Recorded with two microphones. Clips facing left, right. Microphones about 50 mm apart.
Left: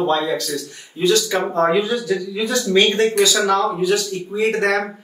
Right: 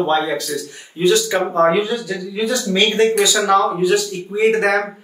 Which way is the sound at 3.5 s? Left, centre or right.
Centre.